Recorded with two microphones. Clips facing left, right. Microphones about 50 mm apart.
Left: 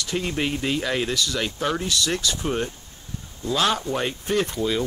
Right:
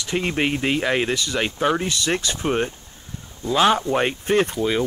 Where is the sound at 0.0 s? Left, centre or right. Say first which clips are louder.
Right 3 dB; right.